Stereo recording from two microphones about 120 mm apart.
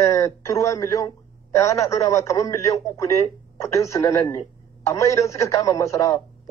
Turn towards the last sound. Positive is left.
turn(degrees=25)  # may be behind; listen again after turning